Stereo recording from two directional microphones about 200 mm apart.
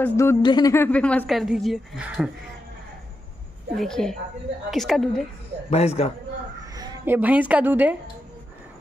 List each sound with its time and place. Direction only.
0.0 s a woman's voice: 15° left (ahead or behind); by 2.3 s 5° right (ahead or behind)
3.7 s a woman's voice: centre (ahead or behind)
5.7 s a man's voice: 30° left (ahead or behind)
6.7 s a woman's voice: 15° right (ahead or behind)